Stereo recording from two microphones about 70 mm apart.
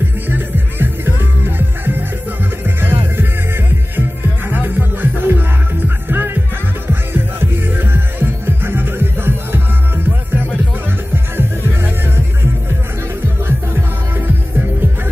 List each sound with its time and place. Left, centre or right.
0.3 s music: right
4.5 s music: right